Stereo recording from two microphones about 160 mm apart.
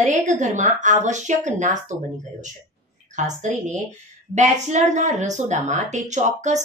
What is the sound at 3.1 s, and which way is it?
A woman's voice, 50° right (ahead or behind).